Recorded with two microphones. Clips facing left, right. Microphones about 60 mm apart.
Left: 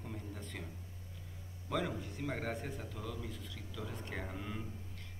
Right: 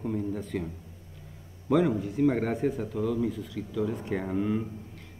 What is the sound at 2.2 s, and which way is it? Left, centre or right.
Speech, centre.